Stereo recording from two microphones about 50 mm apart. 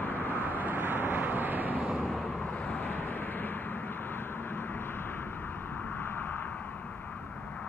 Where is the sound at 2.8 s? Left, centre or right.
Left.